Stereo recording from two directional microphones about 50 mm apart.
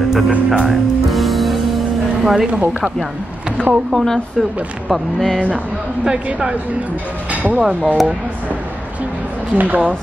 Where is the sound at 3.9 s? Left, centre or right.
Centre.